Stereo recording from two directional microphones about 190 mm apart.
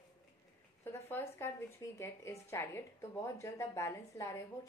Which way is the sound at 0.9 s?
10° left (ahead or behind).